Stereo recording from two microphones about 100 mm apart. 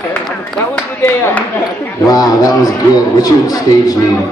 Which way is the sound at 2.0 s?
40° left (ahead or behind).